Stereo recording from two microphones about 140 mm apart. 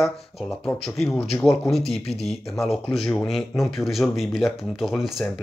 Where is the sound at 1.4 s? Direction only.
Centre (ahead or behind).